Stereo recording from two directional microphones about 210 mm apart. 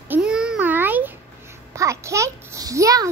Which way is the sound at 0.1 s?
5° right (ahead or behind).